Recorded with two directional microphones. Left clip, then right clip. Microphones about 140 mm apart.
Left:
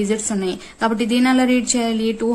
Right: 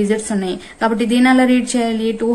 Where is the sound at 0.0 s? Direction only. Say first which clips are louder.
Right 3 dB; 30° left (ahead or behind).